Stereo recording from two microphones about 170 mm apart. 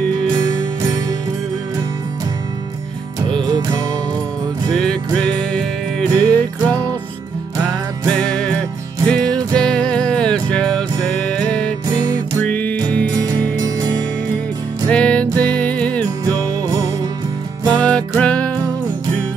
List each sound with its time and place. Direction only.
3.4 s music: 25° right (ahead or behind)
4.7 s music: 5° left (ahead or behind)
8.1 s music: 5° left (ahead or behind)
13.1 s music: 20° right (ahead or behind)
14.9 s music: 5° left (ahead or behind)
17.6 s music: 5° left (ahead or behind)